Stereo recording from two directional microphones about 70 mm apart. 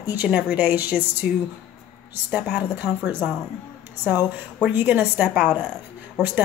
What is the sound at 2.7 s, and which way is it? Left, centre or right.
A woman's voice, right.